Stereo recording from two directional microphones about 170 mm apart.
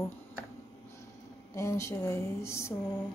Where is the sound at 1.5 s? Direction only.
15° left (ahead or behind).